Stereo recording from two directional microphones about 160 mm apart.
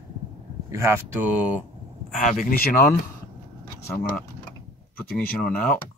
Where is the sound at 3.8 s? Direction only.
10° left (ahead or behind).